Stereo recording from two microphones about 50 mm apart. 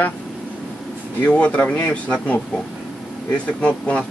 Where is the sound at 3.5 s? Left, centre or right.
Left.